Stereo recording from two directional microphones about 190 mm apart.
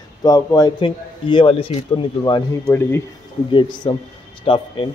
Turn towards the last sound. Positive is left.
turn(degrees=30)  # may be behind; listen again after turning